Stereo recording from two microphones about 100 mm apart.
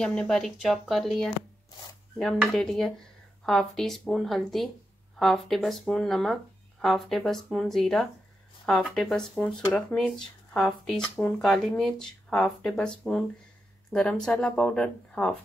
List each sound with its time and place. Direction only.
0.0 s speech: 5° left (ahead or behind)
2.5 s speech: 5° left (ahead or behind)
9.4 s speech: 15° left (ahead or behind)
11.1 s speech: 15° left (ahead or behind)
11.4 s speech: 5° left (ahead or behind)